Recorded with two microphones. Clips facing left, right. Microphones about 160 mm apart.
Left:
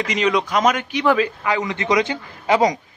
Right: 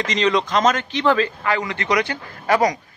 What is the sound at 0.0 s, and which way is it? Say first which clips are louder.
A man's voice: even; 10° left (ahead or behind).